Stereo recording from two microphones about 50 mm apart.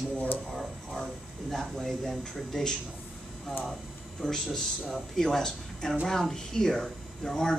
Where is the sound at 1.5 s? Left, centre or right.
Centre.